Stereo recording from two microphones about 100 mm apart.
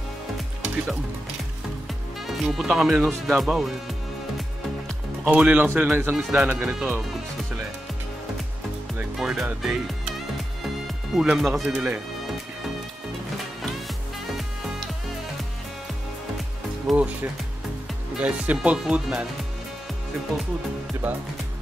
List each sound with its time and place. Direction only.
2.2 s speech: 5° right (ahead or behind)
5.2 s speech: 15° right (ahead or behind)
9.1 s speech: 5° right (ahead or behind)
11.1 s speech: 5° right (ahead or behind)
16.9 s speech: 15° right (ahead or behind)